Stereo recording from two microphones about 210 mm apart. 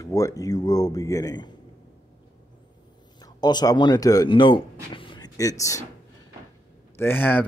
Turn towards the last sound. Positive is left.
turn(degrees=10)  # may be behind; listen again after turning